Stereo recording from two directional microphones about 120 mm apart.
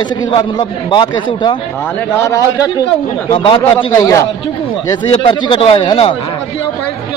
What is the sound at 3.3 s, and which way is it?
Speech, 45° left (ahead or behind).